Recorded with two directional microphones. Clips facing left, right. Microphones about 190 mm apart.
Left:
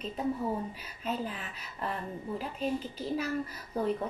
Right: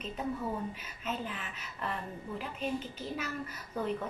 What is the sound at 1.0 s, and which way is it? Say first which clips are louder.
A child's voice: left 3 dB; 35° left (ahead or behind).